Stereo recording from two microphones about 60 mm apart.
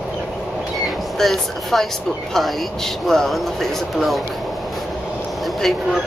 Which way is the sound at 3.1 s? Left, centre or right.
Centre.